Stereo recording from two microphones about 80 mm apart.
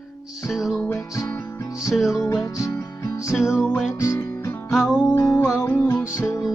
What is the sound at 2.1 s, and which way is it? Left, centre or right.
Music, left.